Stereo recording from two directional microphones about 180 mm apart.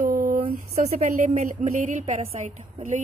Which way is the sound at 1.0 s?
40° right (ahead or behind).